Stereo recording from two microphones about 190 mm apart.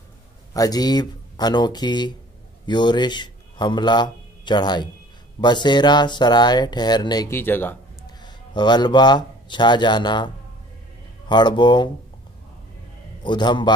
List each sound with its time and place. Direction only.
0.5 s a man's voice: 20° left (ahead or behind)
8.2 s speech: 25° left (ahead or behind)
13.2 s speech: 25° left (ahead or behind)